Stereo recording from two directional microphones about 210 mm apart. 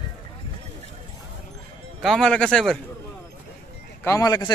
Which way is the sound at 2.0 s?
Centre (ahead or behind).